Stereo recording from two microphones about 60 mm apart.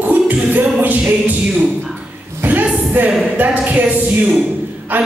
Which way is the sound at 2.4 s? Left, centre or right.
Right.